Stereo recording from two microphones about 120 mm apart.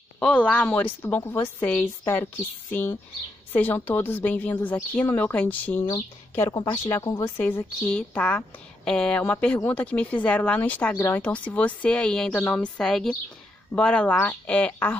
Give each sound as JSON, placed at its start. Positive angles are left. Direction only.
{"t": 0.2, "sound": "a woman's voice", "side_deg": 10}
{"t": 3.5, "sound": "a woman's voice", "side_deg": 15}
{"t": 6.5, "sound": "speech", "side_deg": 35}
{"t": 7.2, "sound": "a woman's voice", "side_deg": 15}